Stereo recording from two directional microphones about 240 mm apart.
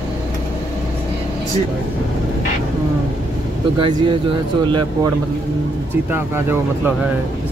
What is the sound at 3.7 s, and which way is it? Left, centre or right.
Speech, centre.